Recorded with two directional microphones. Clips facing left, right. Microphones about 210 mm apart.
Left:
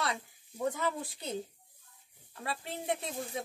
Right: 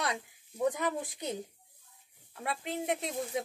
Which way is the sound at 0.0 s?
20° right (ahead or behind).